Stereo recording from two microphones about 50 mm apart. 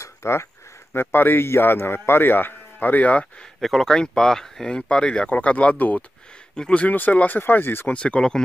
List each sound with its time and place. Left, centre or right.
0.0 s a sound: left
0.9 s a man's voice: left
3.6 s speech: centre; by 7.9 s left
7.9 s speech: left